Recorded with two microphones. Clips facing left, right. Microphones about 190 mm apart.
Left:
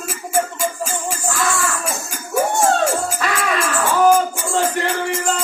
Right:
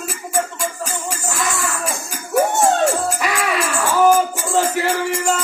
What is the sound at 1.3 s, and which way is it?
Music, 20° right (ahead or behind).